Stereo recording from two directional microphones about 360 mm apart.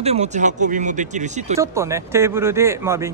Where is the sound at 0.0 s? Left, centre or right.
Centre.